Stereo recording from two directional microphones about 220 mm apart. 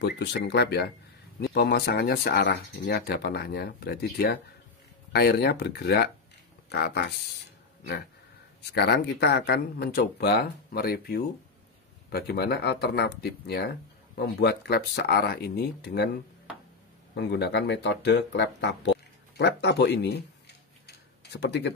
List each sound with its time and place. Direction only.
0.0 s speech: 50° left (ahead or behind)
8.7 s speech: 50° left (ahead or behind)
17.1 s speech: 50° left (ahead or behind)
20.8 s tick-tock: 50° left (ahead or behind)